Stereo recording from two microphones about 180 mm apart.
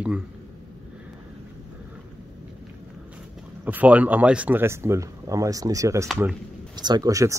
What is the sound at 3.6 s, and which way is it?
Speech, 10° right (ahead or behind).